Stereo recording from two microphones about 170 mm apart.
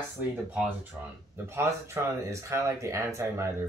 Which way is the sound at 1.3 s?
15° right (ahead or behind).